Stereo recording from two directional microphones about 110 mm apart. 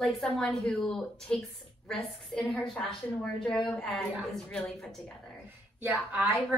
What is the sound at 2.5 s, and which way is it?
A woman's voice, 10° left (ahead or behind).